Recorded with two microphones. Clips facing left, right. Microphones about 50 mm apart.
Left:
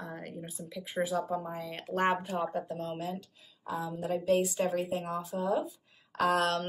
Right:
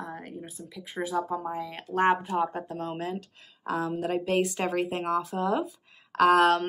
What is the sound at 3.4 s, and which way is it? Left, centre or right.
Speech, right.